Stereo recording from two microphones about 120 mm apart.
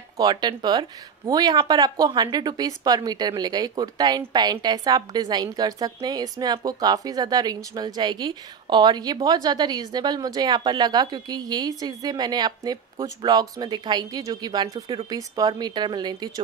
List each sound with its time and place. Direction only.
0.2 s a woman's voice: 35° right (ahead or behind)